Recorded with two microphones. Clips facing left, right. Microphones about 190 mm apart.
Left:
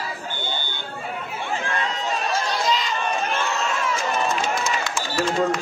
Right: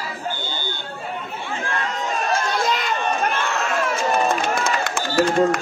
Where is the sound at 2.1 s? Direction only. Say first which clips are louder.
Right 3 dB; 55° right (ahead or behind).